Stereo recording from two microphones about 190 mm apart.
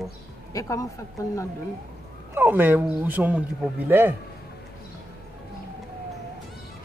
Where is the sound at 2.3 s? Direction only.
10° right (ahead or behind).